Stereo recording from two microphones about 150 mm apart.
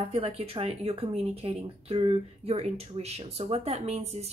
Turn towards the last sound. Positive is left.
turn(degrees=-45)  # may be behind; listen again after turning